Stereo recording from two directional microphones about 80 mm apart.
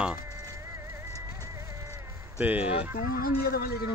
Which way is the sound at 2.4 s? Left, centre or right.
Centre.